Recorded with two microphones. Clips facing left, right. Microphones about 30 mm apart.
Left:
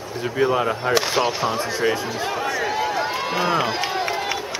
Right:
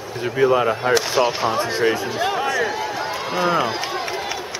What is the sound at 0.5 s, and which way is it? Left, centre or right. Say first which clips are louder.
Speech: right 3 dB; centre.